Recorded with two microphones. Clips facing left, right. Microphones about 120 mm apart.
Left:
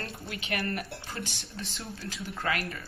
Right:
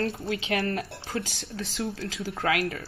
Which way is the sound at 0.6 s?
90° right.